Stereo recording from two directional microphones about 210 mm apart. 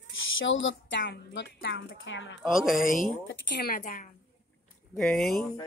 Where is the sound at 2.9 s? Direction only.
40° left (ahead or behind).